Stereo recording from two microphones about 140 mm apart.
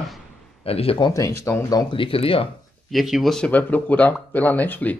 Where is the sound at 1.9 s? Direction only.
40° left (ahead or behind).